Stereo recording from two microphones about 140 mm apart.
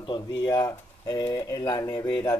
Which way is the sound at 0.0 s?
30° left (ahead or behind).